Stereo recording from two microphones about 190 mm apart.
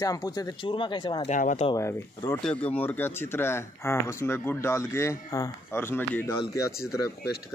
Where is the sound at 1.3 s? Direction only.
40° left (ahead or behind).